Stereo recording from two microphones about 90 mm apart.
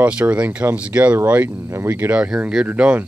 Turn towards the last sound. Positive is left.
turn(degrees=-20)  # may be behind; listen again after turning